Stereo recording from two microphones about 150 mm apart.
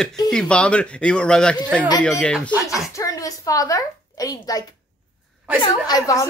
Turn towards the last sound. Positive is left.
turn(degrees=25)  # may be behind; listen again after turning